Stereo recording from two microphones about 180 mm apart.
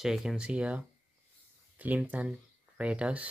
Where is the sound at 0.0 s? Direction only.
Centre (ahead or behind).